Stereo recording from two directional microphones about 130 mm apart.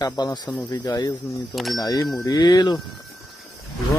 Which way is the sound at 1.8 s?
25° left (ahead or behind).